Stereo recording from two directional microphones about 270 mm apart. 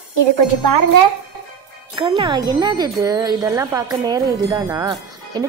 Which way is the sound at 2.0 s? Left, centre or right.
Centre.